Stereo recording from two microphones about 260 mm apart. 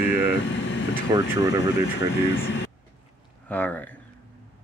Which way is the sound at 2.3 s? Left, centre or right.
Left.